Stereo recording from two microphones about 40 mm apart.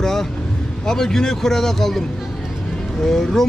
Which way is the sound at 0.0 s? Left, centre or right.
Centre.